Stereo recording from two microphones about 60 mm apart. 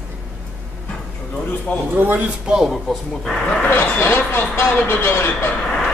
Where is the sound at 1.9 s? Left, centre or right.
Right.